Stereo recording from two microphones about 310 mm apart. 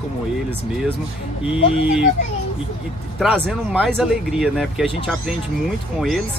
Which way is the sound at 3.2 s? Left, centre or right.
Centre.